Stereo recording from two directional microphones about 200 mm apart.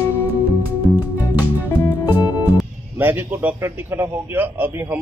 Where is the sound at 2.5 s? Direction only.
10° right (ahead or behind).